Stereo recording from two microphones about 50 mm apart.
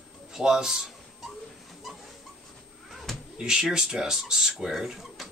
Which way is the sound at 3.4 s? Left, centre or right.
Centre.